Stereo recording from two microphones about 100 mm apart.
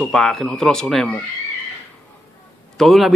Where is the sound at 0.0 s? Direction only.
5° left (ahead or behind).